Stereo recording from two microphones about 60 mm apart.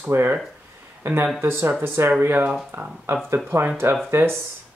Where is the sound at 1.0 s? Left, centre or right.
Right.